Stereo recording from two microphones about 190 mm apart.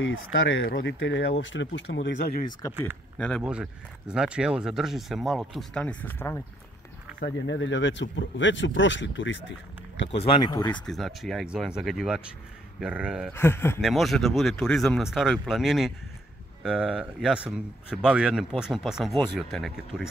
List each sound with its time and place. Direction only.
0.0 s speech: 90° left; by 2.1 s 75° left (ahead or behind)
3.2 s speech: 5° left (ahead or behind)
7.2 s speech: 75° left (ahead or behind)
10.1 s speech: 30° left (ahead or behind)
10.9 s speech: centre (ahead or behind)
13.3 s speech: 10° left (ahead or behind)
13.7 s speech: centre (ahead or behind)